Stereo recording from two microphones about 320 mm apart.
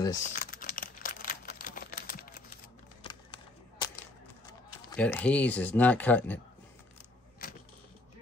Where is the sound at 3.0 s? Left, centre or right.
Centre.